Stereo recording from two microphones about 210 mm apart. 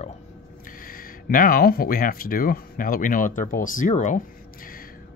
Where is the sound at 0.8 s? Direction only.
40° left (ahead or behind).